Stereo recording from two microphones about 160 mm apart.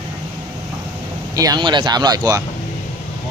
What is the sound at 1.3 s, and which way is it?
Speech, 25° right (ahead or behind).